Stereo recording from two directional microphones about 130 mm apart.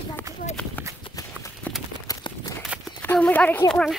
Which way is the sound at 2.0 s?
30° left (ahead or behind).